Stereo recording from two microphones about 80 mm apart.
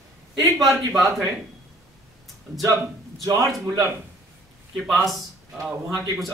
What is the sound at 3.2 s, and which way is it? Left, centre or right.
Speech, right.